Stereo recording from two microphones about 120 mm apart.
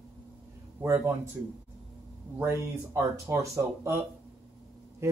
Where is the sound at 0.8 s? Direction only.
25° right (ahead or behind).